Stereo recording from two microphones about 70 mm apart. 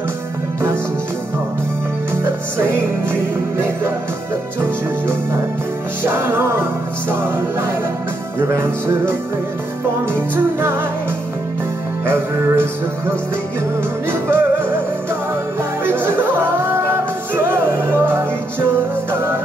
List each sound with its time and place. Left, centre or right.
2.2 s music: right
6.0 s music: right
8.4 s music: right
10.1 s music: right
12.1 s music: right
14.2 s music: right
15.8 s music: right